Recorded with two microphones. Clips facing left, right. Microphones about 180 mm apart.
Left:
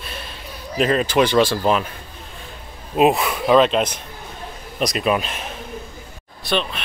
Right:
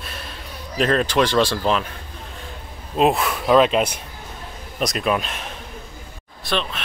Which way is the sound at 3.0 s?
Centre (ahead or behind).